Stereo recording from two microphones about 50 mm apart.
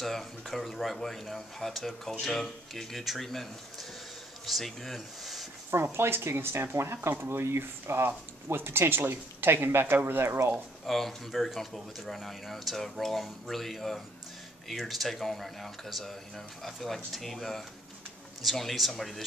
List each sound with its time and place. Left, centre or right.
0.0 s speech: centre
4.5 s speech: centre
5.7 s speech: right
10.9 s speech: centre